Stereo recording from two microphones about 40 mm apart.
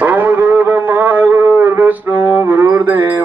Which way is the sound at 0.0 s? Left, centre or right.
Right.